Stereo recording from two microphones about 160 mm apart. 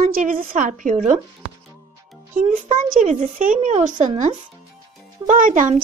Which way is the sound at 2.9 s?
50° right (ahead or behind).